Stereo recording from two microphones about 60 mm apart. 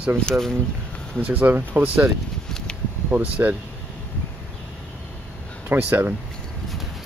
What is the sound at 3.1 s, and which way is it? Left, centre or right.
Speech, right.